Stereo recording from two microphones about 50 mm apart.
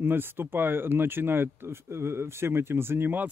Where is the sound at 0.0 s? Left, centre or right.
Right.